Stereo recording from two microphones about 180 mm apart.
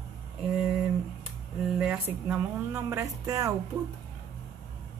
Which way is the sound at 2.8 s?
15° right (ahead or behind).